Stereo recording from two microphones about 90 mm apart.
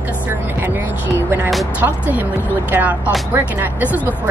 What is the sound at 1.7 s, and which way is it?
Speech, 15° right (ahead or behind).